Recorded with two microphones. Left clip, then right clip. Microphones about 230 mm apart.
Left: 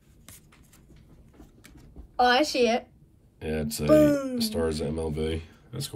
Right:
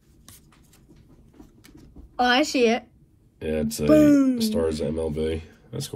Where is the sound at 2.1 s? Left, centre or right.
Right.